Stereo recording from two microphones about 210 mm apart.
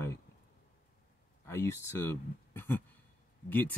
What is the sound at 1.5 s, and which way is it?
Speech, 10° left (ahead or behind).